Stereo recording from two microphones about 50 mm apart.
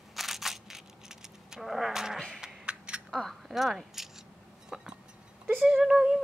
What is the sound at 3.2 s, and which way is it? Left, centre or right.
Speech, centre.